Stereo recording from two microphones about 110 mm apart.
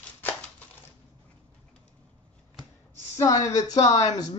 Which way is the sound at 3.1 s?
30° left (ahead or behind).